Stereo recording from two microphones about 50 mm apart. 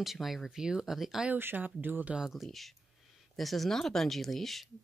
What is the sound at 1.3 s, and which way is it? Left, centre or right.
Speech, right.